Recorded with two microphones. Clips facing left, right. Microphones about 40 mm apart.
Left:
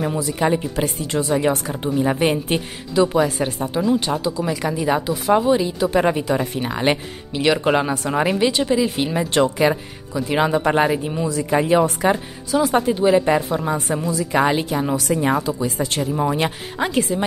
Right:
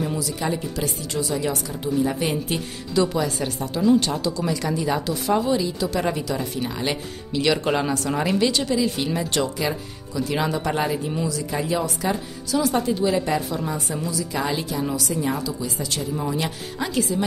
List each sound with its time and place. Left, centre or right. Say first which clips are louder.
0.2 s speech: left 6 dB; left
2.9 s speech: left 5 dB; left
3.8 s speech: right 2 dB; centre
5.3 s speech: left 5 dB; left
7.3 s speech: left 4 dB; left